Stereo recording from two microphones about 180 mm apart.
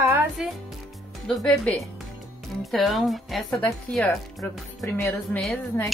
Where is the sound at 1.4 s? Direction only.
5° left (ahead or behind).